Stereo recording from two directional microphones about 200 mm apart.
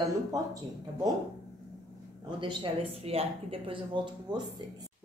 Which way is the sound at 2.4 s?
25° right (ahead or behind).